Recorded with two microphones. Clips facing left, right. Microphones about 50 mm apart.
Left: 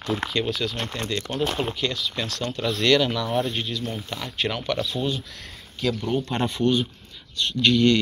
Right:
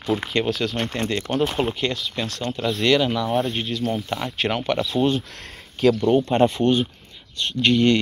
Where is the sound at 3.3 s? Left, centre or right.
Centre.